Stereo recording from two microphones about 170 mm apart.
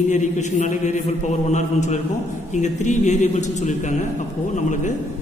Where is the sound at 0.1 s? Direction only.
45° left (ahead or behind).